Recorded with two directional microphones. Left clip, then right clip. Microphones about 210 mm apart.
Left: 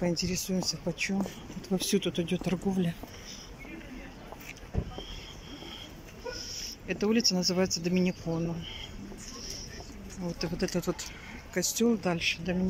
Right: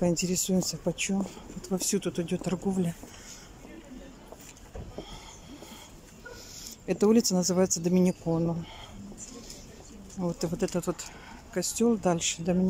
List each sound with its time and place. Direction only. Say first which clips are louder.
0.0 s speech: right 3 dB; 15° right (ahead or behind)
6.9 s speech: right 4 dB; 20° right (ahead or behind)
10.2 s speech: right 3 dB; 15° right (ahead or behind)